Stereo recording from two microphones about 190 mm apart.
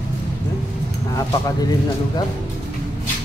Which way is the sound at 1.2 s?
15° left (ahead or behind).